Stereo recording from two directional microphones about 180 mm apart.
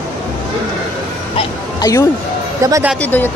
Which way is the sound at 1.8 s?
15° left (ahead or behind).